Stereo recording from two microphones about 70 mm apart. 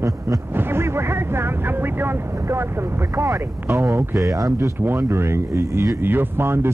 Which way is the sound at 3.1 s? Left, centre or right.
Right.